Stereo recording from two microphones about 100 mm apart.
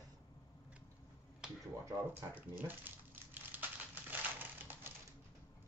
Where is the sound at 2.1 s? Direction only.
20° right (ahead or behind).